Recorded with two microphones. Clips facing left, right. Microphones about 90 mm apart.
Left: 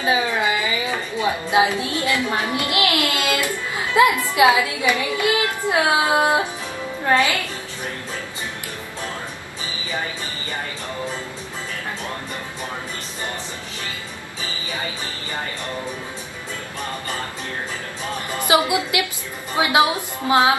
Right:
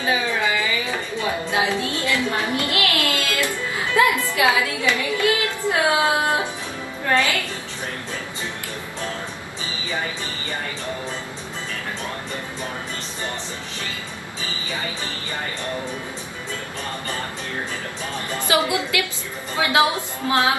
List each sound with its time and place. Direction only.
0.0 s music: 20° left (ahead or behind)
1.1 s a woman's voice: 20° left (ahead or behind)
18.4 s a woman's voice: 15° left (ahead or behind)
20.2 s music: 20° left (ahead or behind)